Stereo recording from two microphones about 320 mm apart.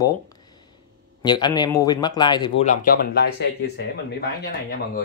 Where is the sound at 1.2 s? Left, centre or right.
Centre.